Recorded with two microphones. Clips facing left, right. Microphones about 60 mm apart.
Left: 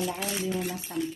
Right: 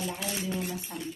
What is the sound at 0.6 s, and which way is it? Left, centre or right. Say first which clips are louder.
Speech: left 2 dB; left.